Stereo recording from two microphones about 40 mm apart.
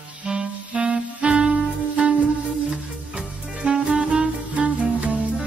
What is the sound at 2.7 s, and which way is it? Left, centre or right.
Music, centre.